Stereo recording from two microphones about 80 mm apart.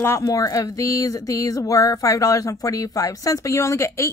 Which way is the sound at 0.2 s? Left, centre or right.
Left.